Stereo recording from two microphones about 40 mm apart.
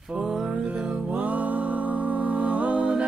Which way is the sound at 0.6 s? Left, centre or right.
Right.